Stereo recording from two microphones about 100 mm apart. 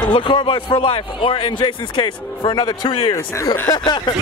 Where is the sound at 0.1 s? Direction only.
55° left (ahead or behind).